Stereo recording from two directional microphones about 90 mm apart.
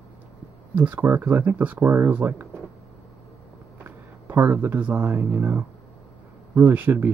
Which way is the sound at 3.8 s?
20° right (ahead or behind).